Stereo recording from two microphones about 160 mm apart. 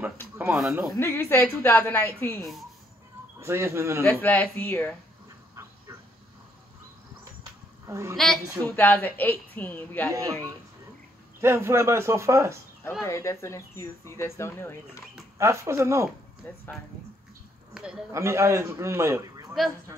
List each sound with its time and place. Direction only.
0.6 s speech: 5° right (ahead or behind)
0.9 s a woman's voice: 15° left (ahead or behind)
3.3 s a man's voice: 15° right (ahead or behind)
4.1 s a woman's voice: 10° left (ahead or behind)
7.8 s a woman's voice: 20° right (ahead or behind)
8.2 s a woman's voice: centre (ahead or behind)
10.1 s a man's voice: 20° right (ahead or behind)
13.0 s a woman's voice: 20° left (ahead or behind)
15.3 s a man's voice: 15° right (ahead or behind)
16.4 s a woman's voice: 10° left (ahead or behind)
17.7 s a man's voice: 5° right (ahead or behind)
18.1 s a man's voice: 15° right (ahead or behind)